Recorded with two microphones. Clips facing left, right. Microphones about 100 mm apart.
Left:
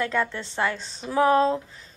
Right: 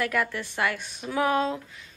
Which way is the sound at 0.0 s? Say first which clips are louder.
Left 1 dB; 25° left (ahead or behind).